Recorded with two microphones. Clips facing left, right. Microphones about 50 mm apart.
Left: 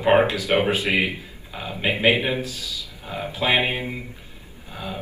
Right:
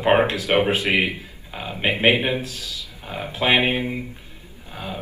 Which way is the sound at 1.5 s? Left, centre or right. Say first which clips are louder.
Right 1 dB; right.